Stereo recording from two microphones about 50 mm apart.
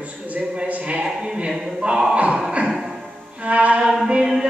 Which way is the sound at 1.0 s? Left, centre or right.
Centre.